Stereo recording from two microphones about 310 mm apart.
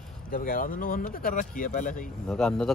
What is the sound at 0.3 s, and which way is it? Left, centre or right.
Speech, left.